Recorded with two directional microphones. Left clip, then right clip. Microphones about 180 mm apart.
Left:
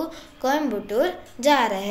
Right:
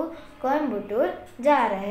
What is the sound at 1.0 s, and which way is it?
Speech, 70° left (ahead or behind).